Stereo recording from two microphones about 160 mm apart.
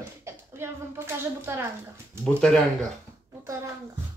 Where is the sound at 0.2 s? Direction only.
15° right (ahead or behind).